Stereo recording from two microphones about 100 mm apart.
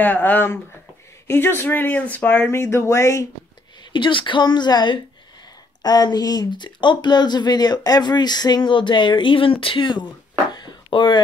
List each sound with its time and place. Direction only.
0.0 s speech: 15° left (ahead or behind)
3.9 s speech: 55° left (ahead or behind)
10.5 s a sound: 50° left (ahead or behind)